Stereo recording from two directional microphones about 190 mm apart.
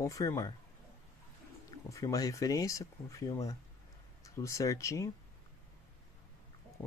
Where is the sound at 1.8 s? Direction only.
15° left (ahead or behind).